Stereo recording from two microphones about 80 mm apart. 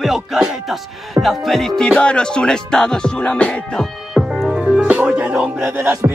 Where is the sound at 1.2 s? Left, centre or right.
Centre.